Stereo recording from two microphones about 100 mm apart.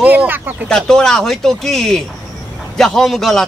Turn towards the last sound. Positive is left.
turn(degrees=0)  # may be behind; listen again after turning